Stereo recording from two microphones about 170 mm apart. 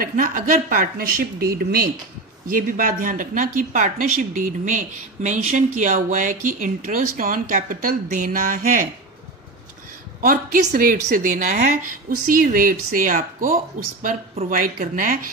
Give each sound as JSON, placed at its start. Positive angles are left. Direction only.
{"t": 0.0, "sound": "speech", "side_deg": -55}
{"t": 10.2, "sound": "speech", "side_deg": -55}